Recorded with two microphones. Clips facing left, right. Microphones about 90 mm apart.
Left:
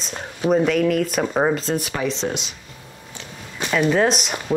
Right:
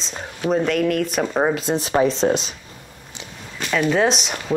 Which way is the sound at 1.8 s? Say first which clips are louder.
Right 6 dB; 30° right (ahead or behind).